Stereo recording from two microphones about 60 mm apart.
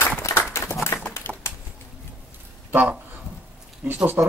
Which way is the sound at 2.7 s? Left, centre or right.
Right.